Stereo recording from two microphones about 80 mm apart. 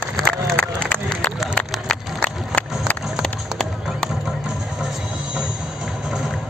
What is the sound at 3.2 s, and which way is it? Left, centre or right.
Run, centre.